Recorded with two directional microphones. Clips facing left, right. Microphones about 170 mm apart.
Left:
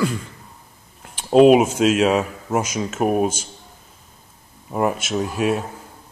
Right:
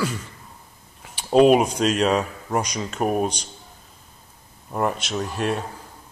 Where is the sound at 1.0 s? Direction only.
Centre (ahead or behind).